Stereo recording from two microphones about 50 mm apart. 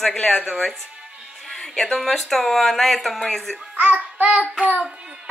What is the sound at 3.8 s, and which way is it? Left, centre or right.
Child singing, right.